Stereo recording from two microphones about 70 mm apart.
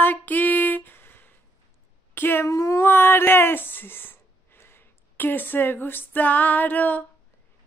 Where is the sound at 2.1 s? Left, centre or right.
Left.